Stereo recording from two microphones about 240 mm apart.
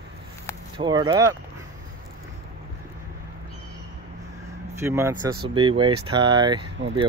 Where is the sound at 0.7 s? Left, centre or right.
Centre.